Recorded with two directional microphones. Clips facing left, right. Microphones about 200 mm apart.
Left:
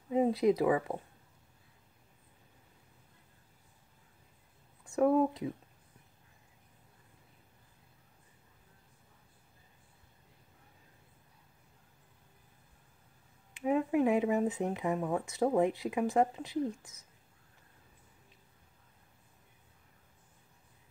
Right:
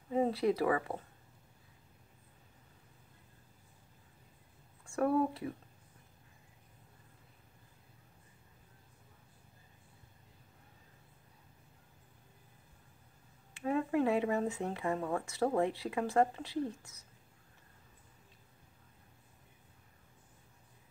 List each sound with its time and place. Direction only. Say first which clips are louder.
0.1 s speech: left 3 dB; 15° left (ahead or behind)
4.8 s speech: left 4 dB; 20° left (ahead or behind)
13.5 s speech: left 3 dB; 15° left (ahead or behind)